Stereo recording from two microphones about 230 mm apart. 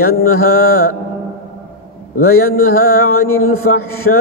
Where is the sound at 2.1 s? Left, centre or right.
Left.